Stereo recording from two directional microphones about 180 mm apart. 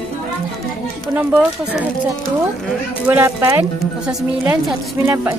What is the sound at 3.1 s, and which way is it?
A woman's voice, 15° right (ahead or behind).